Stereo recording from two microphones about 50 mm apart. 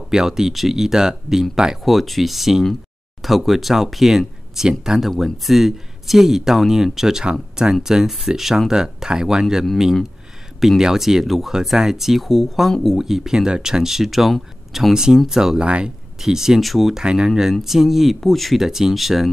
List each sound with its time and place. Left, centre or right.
0.1 s speech: centre
10.8 s speech: centre
15.6 s speech: right
16.2 s speech: centre
16.9 s speech: centre
18.6 s speech: centre